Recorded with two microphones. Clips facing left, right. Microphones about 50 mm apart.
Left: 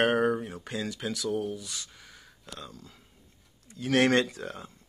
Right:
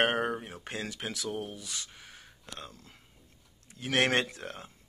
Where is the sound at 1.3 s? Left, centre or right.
Right.